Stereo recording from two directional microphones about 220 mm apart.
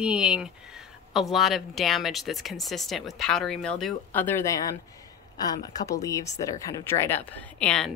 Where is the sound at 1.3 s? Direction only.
Centre (ahead or behind).